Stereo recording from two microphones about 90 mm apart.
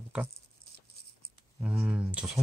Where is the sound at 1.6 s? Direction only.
10° right (ahead or behind).